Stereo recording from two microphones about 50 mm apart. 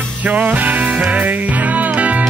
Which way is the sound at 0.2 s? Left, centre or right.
Right.